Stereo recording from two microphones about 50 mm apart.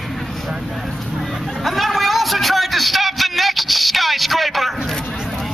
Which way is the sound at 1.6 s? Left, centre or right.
Centre.